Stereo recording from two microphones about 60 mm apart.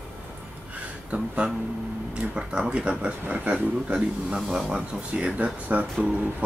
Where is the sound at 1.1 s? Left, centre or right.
Right.